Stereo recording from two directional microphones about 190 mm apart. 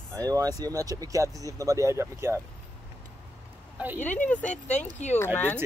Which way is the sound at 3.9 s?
10° left (ahead or behind).